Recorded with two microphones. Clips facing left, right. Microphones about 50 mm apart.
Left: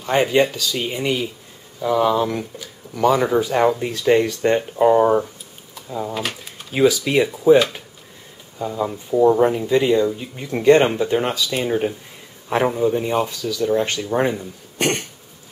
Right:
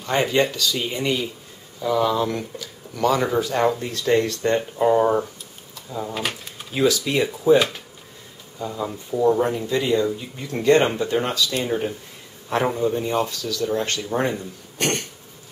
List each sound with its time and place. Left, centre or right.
0.0 s speech: centre
6.1 s speech: centre
6.7 s speech: centre